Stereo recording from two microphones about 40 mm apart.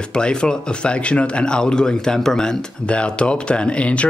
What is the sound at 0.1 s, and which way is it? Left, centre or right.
Speech, left.